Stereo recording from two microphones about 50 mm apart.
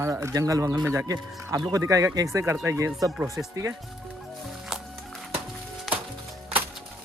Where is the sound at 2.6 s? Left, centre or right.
Right.